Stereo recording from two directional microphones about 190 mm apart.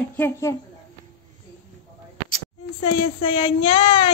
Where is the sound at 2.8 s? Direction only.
30° left (ahead or behind).